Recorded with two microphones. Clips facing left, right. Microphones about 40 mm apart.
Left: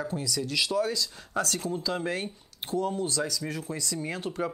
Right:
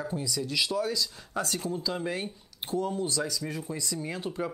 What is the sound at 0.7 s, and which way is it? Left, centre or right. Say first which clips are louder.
Speech: left 2 dB; left.